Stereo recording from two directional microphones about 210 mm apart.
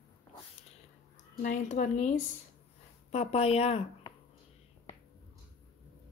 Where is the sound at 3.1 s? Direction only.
30° left (ahead or behind).